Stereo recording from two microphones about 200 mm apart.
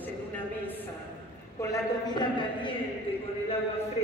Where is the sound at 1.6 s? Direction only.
20° left (ahead or behind).